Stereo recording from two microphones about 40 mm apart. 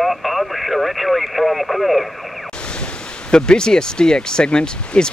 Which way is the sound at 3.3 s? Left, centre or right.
Centre.